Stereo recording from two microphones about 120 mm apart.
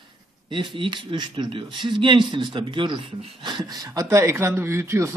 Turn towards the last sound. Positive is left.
turn(degrees=-20)  # may be behind; listen again after turning